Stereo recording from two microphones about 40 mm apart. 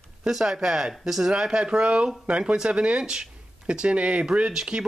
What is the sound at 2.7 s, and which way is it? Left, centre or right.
Speech, right.